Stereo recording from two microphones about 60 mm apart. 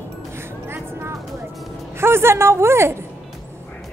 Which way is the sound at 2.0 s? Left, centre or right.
Right.